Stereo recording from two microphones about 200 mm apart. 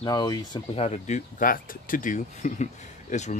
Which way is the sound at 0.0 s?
20° left (ahead or behind).